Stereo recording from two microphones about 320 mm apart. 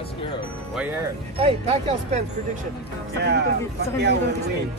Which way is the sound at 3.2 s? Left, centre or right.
Right.